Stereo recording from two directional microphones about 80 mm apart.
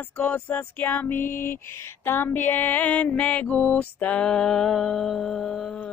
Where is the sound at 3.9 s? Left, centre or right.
Centre.